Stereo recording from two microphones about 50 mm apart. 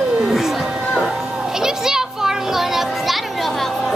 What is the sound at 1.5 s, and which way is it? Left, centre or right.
Music, centre.